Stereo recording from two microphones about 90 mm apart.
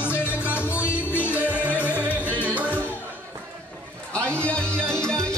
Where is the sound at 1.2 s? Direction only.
20° right (ahead or behind).